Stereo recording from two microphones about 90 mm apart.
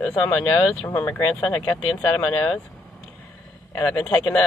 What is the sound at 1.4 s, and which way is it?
Speech, 10° left (ahead or behind).